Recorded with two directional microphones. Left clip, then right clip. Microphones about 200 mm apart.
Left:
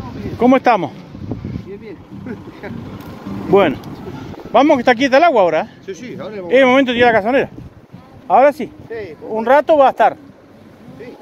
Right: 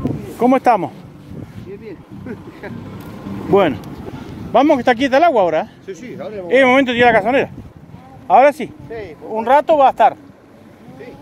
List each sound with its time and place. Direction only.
0.4 s speech: 5° right (ahead or behind)
1.9 s vehicle: 10° right (ahead or behind)
3.4 s speech: 5° right (ahead or behind)
5.9 s speech: 10° left (ahead or behind)
6.1 s speech: 25° left (ahead or behind)
6.5 s speech: 5° right (ahead or behind)
9.3 s speech: 20° left (ahead or behind)